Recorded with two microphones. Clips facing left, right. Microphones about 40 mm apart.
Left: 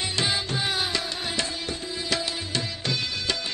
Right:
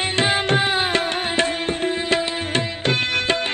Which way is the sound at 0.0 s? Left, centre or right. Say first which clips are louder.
Right 7 dB; right.